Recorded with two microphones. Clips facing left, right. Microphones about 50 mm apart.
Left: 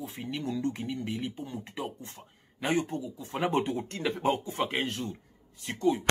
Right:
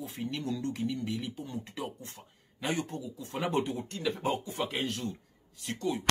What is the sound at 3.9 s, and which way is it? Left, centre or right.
Speech, left.